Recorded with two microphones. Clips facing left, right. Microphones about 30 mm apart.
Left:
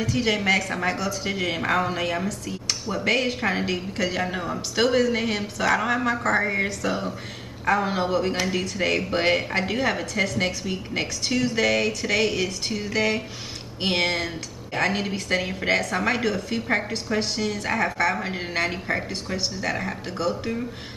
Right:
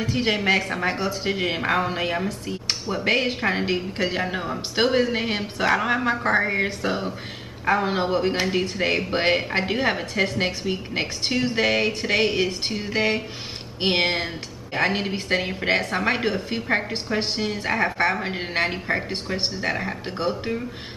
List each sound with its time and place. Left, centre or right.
0.0 s a man's voice: right
5.8 s a man's voice: centre
19.3 s a man's voice: right